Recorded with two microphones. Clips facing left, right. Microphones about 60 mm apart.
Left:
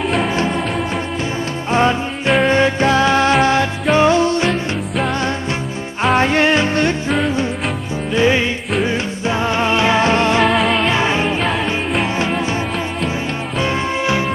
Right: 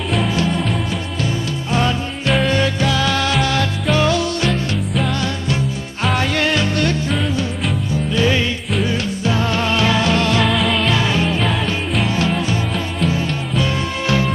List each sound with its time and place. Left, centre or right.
0.3 s music: left
1.7 s music: left
4.5 s music: centre
6.1 s music: left
7.1 s music: centre
8.1 s music: left
10.4 s music: centre
10.9 s music: left
13.6 s music: left